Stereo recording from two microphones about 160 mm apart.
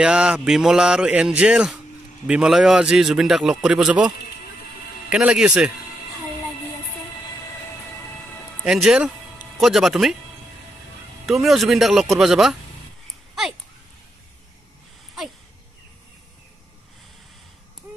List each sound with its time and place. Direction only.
0.0 s a man's voice: 5° right (ahead or behind)
5.1 s a man's voice: 5° right (ahead or behind)
8.6 s a man's voice: 5° right (ahead or behind)
11.2 s a man's voice: centre (ahead or behind)
13.3 s a sound: centre (ahead or behind)